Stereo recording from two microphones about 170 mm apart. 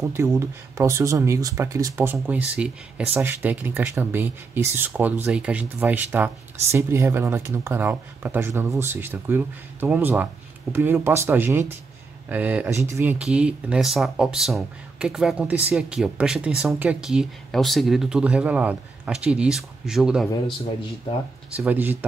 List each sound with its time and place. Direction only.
0.0 s speech: 15° right (ahead or behind)
21.5 s speech: 10° right (ahead or behind)